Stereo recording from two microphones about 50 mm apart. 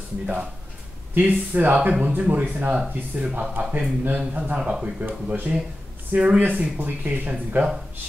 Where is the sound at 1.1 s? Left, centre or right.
Right.